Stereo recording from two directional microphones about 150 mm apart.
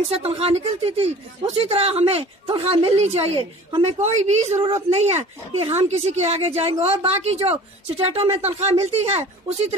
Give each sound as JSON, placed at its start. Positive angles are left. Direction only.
{"t": 0.0, "sound": "a woman's voice", "side_deg": -40}